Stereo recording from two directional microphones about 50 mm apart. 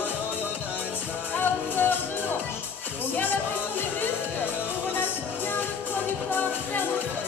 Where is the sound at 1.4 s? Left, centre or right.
Left.